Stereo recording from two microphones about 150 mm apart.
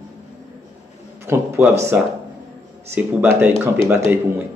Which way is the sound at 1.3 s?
15° right (ahead or behind).